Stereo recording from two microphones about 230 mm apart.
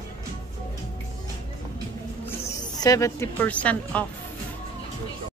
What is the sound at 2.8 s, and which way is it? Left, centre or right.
A woman's voice, centre.